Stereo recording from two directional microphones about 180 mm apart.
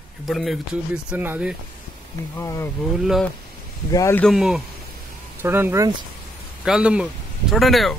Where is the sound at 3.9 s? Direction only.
15° left (ahead or behind).